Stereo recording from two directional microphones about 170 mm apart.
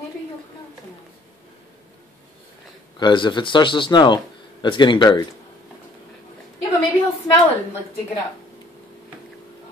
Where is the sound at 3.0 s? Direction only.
25° left (ahead or behind).